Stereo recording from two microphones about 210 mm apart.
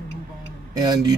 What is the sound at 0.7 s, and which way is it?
Speech, 20° right (ahead or behind).